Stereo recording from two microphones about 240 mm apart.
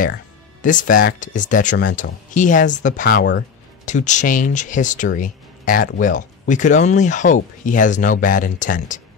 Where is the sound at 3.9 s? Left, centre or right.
Left.